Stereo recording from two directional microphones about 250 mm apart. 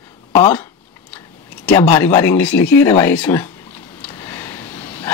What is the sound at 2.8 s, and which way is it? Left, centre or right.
Speech, centre.